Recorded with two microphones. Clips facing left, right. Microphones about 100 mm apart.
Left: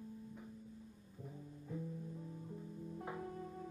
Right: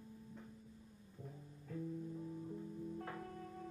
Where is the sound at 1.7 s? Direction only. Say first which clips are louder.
Even; 20° left (ahead or behind).